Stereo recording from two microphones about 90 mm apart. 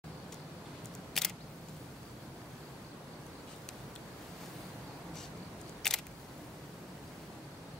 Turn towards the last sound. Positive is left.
turn(degrees=5)  # may be behind; listen again after turning